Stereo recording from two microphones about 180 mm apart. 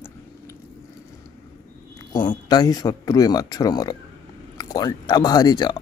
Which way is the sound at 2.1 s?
25° left (ahead or behind).